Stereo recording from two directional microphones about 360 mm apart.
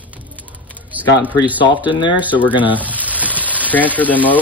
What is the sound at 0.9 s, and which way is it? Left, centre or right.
Speech, centre.